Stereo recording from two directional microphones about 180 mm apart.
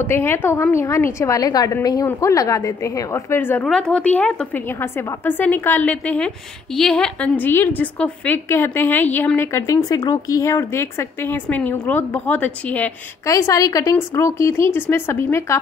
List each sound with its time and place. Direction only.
0.0 s a woman's voice: 10° left (ahead or behind)